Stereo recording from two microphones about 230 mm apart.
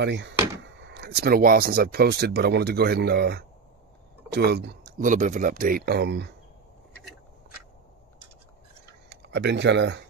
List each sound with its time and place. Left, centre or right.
0.0 s speech: right
9.1 s speech: right